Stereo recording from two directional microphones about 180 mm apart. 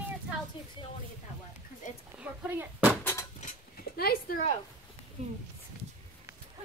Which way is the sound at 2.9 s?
10° left (ahead or behind).